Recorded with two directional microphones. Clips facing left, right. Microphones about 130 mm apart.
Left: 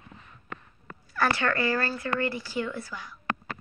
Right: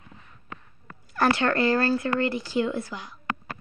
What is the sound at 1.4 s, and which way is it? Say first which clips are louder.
Speech: right 4 dB; 25° right (ahead or behind).